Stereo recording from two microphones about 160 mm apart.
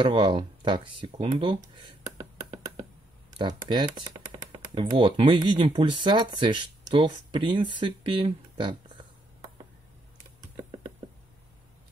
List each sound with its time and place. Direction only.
0.0 s speech: 30° right (ahead or behind)
10.4 s typing: 25° right (ahead or behind)